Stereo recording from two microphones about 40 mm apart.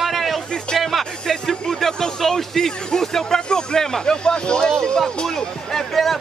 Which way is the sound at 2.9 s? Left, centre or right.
Centre.